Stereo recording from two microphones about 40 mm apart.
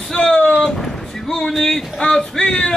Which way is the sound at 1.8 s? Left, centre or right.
Centre.